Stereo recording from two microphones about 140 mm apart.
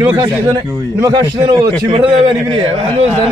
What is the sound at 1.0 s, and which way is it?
A man's voice, 30° right (ahead or behind).